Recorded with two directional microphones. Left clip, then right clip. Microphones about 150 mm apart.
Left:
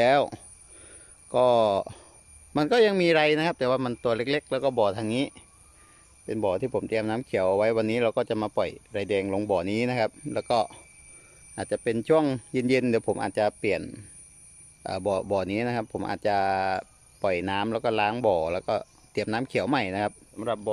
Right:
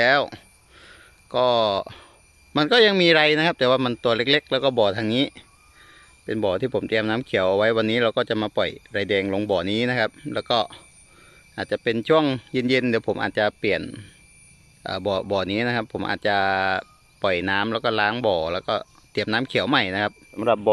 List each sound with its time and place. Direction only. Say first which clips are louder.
0.0 s a sound: right 2 dB; 20° left (ahead or behind)
2.5 s speech: right 4 dB; 10° left (ahead or behind)
20.3 s speech: right 11 dB; 10° right (ahead or behind)